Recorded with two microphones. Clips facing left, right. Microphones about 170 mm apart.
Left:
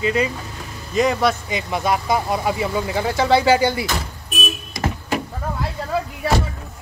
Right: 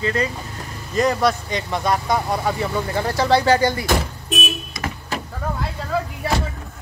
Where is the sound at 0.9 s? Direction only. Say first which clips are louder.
Even; centre (ahead or behind).